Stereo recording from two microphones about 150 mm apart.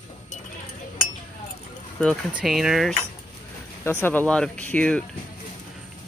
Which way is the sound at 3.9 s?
15° left (ahead or behind).